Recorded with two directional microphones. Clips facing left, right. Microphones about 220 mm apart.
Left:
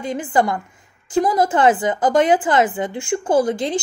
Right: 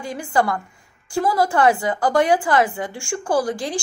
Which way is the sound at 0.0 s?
20° left (ahead or behind).